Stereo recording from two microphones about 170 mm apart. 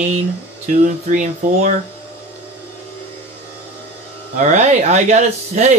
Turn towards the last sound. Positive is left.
turn(degrees=-45)  # may be behind; listen again after turning